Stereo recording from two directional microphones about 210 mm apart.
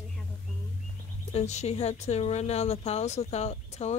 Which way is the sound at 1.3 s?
30° left (ahead or behind).